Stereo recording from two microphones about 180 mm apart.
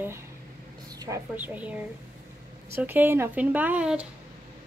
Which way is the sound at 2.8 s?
10° right (ahead or behind).